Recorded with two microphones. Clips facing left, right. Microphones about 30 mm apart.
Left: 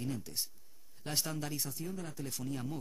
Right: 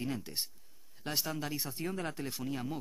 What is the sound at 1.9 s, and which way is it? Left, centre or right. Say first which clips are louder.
Speech: right 5 dB; right.